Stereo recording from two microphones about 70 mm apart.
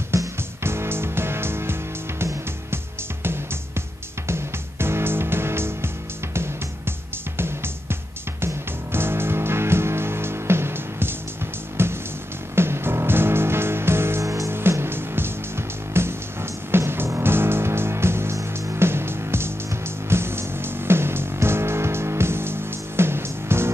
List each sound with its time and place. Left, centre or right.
0.1 s music: right
4.3 s music: right
7.3 s music: right
14.5 s music: right